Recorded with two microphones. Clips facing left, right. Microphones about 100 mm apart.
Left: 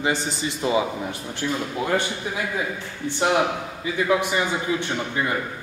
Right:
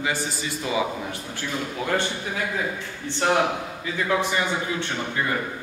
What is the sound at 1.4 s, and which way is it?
Speech, 15° left (ahead or behind).